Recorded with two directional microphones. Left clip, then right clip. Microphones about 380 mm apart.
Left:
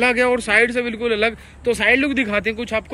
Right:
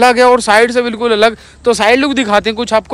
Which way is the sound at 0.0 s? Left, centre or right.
Centre.